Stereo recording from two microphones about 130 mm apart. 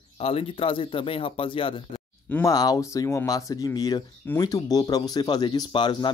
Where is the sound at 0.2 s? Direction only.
45° left (ahead or behind).